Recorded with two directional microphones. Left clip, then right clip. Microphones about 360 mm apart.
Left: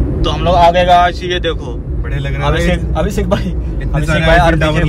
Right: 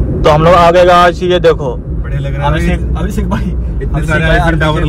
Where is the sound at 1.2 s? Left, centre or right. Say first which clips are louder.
Right 8 dB; centre.